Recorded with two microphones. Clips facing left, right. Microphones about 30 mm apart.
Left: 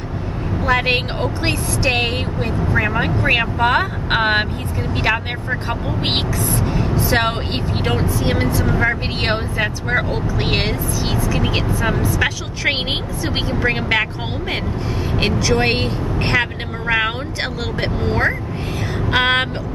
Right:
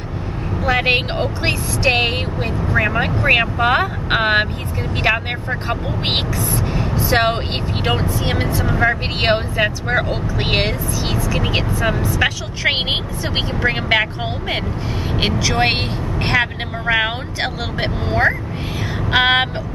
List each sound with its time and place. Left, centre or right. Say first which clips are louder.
0.7 s speech: right 1 dB; centre
15.1 s speech: left 1 dB; centre
15.6 s speech: right 1 dB; right
16.2 s speech: right 2 dB; centre